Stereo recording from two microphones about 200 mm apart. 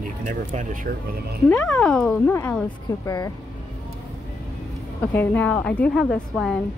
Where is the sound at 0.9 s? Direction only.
45° right (ahead or behind).